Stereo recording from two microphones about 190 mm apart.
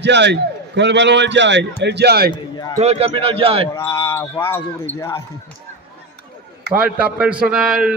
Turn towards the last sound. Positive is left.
turn(degrees=-5)  # may be behind; listen again after turning